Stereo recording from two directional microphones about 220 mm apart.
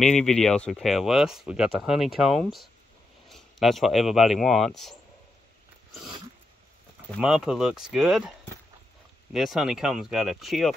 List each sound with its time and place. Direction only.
0.0 s speech: 5° left (ahead or behind)
7.2 s speech: centre (ahead or behind)
9.3 s speech: centre (ahead or behind)